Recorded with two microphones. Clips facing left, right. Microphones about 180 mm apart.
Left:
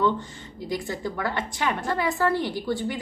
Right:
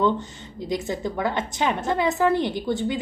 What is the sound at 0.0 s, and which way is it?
A woman's voice, 20° right (ahead or behind).